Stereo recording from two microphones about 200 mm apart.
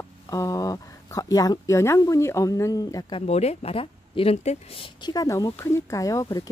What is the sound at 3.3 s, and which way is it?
Speech, 30° left (ahead or behind).